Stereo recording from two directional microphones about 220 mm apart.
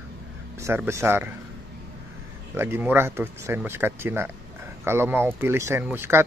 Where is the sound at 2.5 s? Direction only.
10° right (ahead or behind).